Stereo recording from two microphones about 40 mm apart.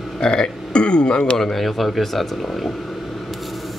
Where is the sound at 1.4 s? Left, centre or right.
Centre.